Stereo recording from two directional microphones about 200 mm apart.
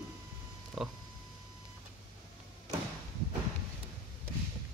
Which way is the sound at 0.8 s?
5° right (ahead or behind).